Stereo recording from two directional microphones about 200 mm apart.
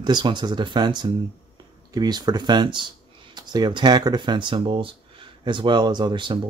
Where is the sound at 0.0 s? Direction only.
20° right (ahead or behind).